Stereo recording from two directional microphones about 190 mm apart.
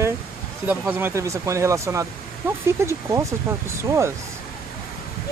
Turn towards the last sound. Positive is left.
turn(degrees=-15)  # may be behind; listen again after turning